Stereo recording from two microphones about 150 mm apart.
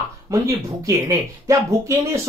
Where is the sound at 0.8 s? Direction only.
20° right (ahead or behind).